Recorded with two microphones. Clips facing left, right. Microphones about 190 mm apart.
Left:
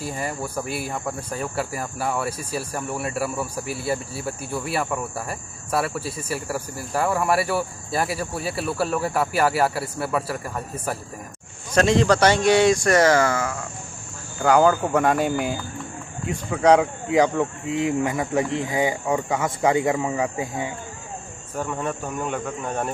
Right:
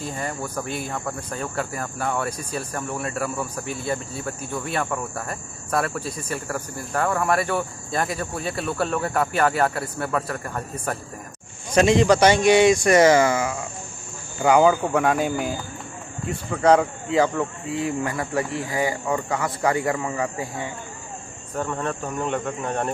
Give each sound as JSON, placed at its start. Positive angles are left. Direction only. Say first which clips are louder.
{"t": 0.0, "sound": "speech", "louder": "left 1 dB", "side_deg": 10}
{"t": 11.7, "sound": "speech", "louder": "right 1 dB", "side_deg": -10}
{"t": 16.6, "sound": "speech", "louder": "left 1 dB", "side_deg": -5}
{"t": 17.1, "sound": "speech", "louder": "left 2 dB", "side_deg": 15}